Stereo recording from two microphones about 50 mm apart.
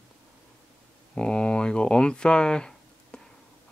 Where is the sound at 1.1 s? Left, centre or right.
Centre.